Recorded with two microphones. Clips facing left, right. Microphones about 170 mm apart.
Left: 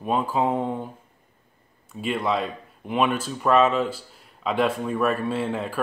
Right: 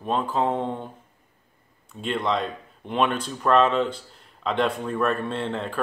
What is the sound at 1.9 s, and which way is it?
Speech, 5° left (ahead or behind).